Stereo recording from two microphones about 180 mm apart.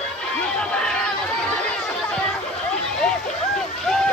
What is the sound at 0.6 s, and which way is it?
Chatter, 5° left (ahead or behind).